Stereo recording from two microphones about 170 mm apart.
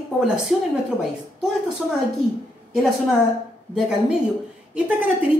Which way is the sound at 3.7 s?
5° right (ahead or behind).